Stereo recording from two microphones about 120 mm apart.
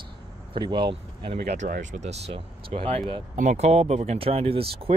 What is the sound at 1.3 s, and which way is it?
Speech, 70° right (ahead or behind).